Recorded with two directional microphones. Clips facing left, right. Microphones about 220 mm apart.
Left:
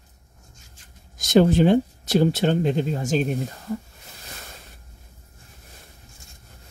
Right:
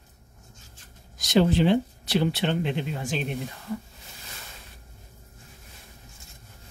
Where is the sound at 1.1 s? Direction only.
50° left (ahead or behind).